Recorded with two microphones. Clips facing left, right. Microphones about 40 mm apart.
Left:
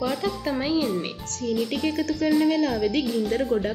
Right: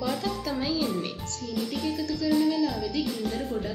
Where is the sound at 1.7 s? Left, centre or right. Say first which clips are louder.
Left 4 dB; left.